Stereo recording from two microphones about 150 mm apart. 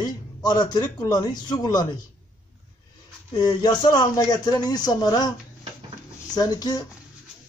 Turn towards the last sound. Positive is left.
turn(degrees=25)  # may be behind; listen again after turning